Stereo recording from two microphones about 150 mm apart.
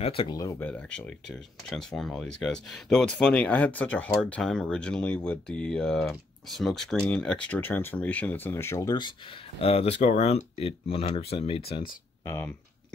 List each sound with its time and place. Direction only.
0.0 s speech: 40° left (ahead or behind)
0.4 s speech: 15° left (ahead or behind)
9.6 s speech: 40° left (ahead or behind)
12.3 s speech: 15° left (ahead or behind)